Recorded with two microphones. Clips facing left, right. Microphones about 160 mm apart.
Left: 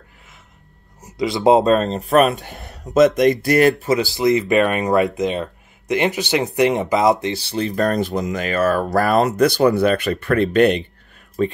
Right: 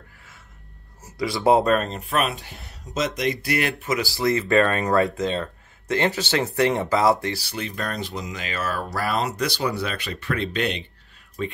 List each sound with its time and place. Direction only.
1.0 s speech: 20° left (ahead or behind); by 4.0 s 40° left (ahead or behind)
4.0 s speech: 20° left (ahead or behind); by 11.5 s 40° left (ahead or behind)